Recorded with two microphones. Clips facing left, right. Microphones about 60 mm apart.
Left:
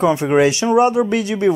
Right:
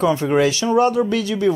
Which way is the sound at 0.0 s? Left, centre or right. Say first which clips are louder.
Left 2 dB; centre.